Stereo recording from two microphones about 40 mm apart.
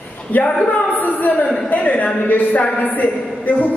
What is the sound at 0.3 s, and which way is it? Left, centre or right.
Speech, left.